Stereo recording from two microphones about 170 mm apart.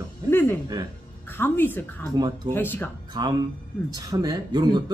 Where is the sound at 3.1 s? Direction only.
25° right (ahead or behind).